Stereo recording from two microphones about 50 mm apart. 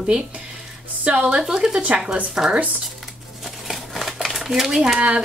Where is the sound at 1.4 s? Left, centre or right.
Centre.